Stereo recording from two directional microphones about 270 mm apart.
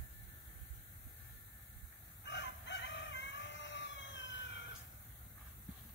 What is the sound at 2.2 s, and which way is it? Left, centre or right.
Chicken, left.